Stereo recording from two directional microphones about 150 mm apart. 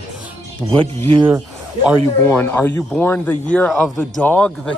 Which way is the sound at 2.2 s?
10° left (ahead or behind).